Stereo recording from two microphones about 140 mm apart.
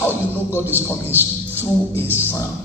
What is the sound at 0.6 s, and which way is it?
Speech, 15° right (ahead or behind).